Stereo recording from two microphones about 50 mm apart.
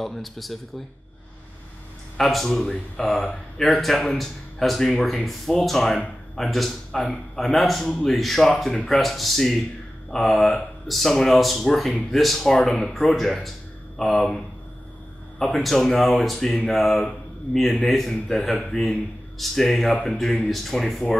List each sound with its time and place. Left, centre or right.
0.0 s speech: centre
2.1 s speech: centre
17.5 s a man's voice: left
17.8 s speech: centre